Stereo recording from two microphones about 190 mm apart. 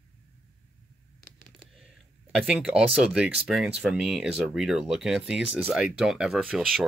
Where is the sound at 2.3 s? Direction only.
5° right (ahead or behind).